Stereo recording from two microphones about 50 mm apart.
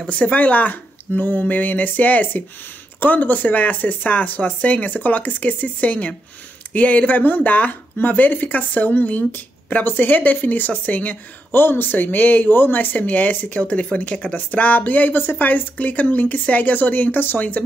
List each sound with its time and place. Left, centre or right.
0.1 s speech: left
11.5 s speech: left